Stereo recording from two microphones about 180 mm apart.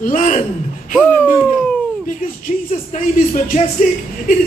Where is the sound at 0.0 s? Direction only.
45° left (ahead or behind).